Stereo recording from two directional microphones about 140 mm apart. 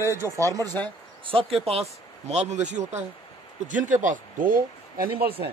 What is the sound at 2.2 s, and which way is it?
Speech, 55° right (ahead or behind).